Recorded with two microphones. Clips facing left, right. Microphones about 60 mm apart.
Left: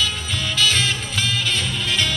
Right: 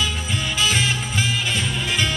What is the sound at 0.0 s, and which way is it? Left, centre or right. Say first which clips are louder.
Music: even; centre.